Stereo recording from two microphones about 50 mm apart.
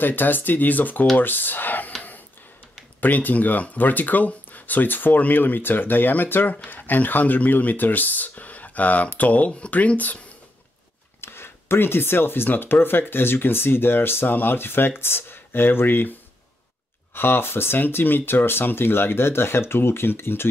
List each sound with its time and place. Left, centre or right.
0.0 s speech: left
3.0 s speech: left
11.1 s speech: left
17.1 s speech: left